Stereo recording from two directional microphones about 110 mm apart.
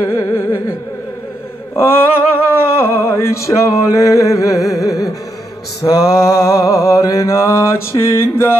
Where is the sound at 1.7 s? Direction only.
20° left (ahead or behind).